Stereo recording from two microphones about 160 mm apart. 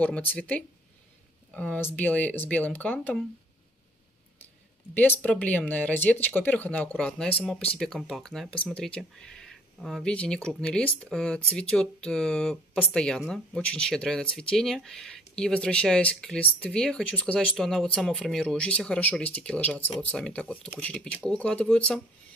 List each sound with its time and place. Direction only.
0.0 s speech: 10° left (ahead or behind)
4.9 s speech: 10° left (ahead or behind)